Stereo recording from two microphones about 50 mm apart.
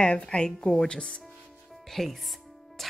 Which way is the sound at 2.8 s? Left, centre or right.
Centre.